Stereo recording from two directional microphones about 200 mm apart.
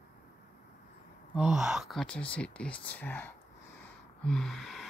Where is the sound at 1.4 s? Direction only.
Centre (ahead or behind).